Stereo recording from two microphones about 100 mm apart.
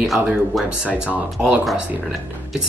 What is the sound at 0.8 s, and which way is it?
Speech, 10° right (ahead or behind).